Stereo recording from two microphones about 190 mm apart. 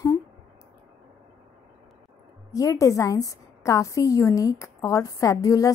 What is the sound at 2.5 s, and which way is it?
A woman's voice, 15° left (ahead or behind).